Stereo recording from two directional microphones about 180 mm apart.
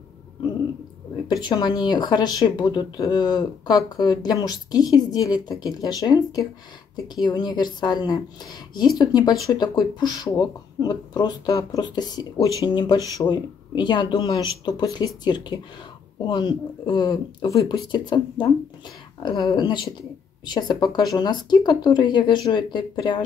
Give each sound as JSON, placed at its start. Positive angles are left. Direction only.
{"t": 1.2, "sound": "a woman's voice", "side_deg": 20}